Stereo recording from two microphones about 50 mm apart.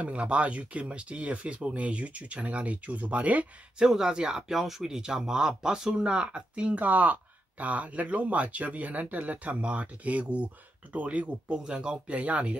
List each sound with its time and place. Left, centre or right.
0.0 s speech: right
3.8 s speech: centre